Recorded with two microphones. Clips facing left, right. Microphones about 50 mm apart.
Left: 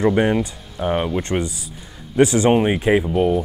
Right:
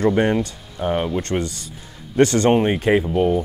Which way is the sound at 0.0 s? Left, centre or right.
Centre.